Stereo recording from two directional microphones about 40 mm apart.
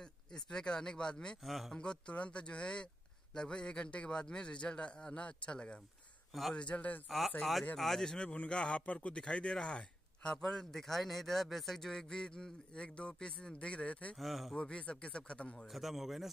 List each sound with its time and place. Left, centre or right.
0.0 s speech: centre
1.4 s a man's voice: centre
1.8 s a man's voice: left
7.1 s a man's voice: centre
7.7 s speech: centre
8.1 s a man's voice: left
9.2 s speech: left
10.4 s a man's voice: centre; by 14.1 s left
14.1 s a man's voice: centre
14.5 s a man's voice: left
15.5 s a man's voice: centre